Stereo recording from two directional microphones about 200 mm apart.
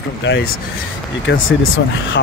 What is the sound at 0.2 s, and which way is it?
Speech, 60° left (ahead or behind).